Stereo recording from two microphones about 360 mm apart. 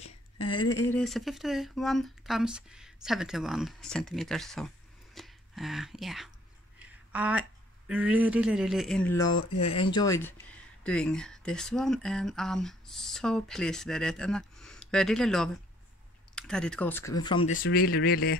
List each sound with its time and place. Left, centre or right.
0.6 s speech: centre
17.6 s speech: left